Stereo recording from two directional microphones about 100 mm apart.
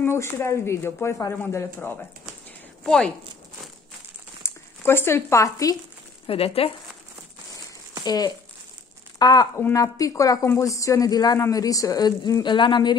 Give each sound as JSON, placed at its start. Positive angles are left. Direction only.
{"t": 0.0, "sound": "speech", "side_deg": 25}
{"t": 2.8, "sound": "speech", "side_deg": 5}
{"t": 4.4, "sound": "speech", "side_deg": 25}
{"t": 6.2, "sound": "speech", "side_deg": 75}
{"t": 8.0, "sound": "speech", "side_deg": 45}